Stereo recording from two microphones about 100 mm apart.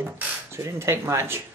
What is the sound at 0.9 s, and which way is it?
Speech, 25° right (ahead or behind).